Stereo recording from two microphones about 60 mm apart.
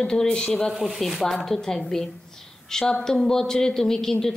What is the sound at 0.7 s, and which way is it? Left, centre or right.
Speech, centre.